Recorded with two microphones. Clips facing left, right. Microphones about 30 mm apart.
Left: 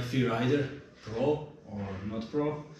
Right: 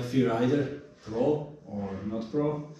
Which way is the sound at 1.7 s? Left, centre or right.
Left.